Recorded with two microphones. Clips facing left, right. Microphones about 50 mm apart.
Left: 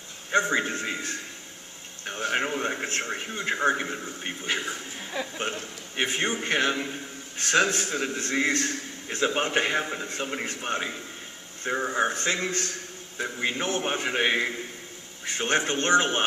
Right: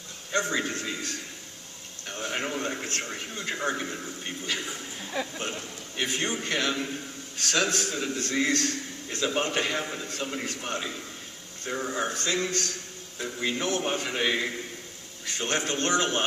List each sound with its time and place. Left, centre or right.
0.3 s a man's voice: centre
5.1 s speech: centre
6.4 s a man's voice: left